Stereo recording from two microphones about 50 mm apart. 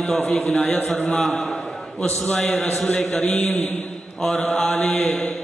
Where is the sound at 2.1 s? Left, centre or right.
Left.